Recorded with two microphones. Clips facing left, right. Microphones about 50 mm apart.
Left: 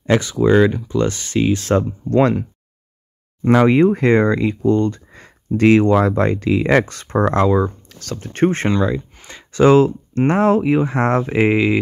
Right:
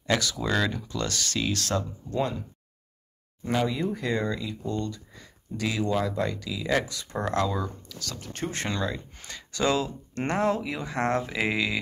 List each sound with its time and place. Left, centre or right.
0.0 s speech: left
2.0 s speech: left
3.4 s speech: left
8.7 s speech: left